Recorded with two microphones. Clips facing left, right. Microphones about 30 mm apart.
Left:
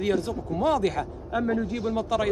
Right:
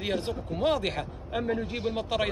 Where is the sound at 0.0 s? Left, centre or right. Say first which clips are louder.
Left 5 dB; right.